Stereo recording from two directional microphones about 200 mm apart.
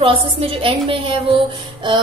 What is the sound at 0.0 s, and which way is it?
A woman's voice, 25° right (ahead or behind).